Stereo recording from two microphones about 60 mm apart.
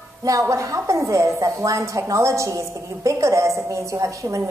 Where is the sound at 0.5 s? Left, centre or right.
Right.